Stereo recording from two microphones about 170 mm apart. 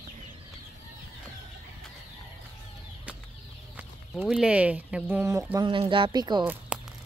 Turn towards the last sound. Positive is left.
turn(degrees=-5)  # may be behind; listen again after turning